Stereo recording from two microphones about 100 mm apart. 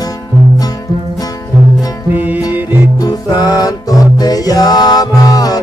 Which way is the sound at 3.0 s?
40° left (ahead or behind).